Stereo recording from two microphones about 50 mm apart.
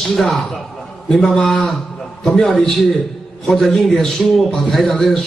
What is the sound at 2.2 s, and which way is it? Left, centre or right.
A man's voice, centre.